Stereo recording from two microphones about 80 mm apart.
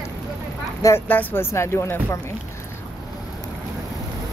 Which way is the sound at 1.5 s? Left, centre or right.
Left.